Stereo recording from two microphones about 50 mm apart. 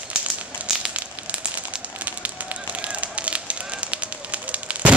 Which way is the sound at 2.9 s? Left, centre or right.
Right.